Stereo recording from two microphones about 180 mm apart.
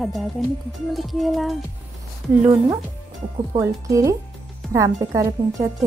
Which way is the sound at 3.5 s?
15° right (ahead or behind).